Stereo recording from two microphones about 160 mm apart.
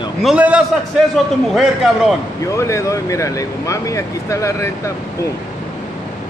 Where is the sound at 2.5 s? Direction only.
20° left (ahead or behind).